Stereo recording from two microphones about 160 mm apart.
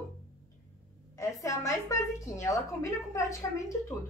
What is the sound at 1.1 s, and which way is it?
Speech, 20° left (ahead or behind).